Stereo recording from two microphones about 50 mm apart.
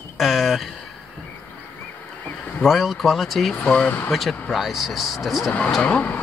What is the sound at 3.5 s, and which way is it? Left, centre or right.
Speech, left.